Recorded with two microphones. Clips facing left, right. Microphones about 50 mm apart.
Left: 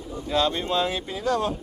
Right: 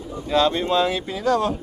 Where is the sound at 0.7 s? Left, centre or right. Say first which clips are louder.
Right 4 dB; right.